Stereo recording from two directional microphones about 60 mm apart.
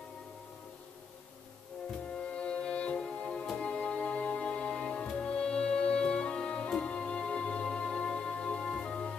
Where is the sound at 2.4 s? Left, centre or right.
Centre.